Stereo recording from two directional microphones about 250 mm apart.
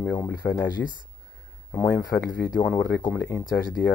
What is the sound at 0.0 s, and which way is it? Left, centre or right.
Speech, centre.